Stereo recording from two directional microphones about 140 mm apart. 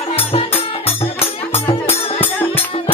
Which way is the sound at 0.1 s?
45° left (ahead or behind).